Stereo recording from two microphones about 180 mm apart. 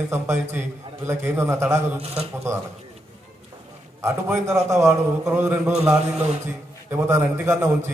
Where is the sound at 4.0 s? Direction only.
15° right (ahead or behind).